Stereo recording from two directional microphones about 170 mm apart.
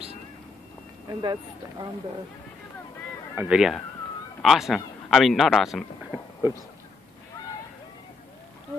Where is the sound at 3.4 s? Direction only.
5° right (ahead or behind).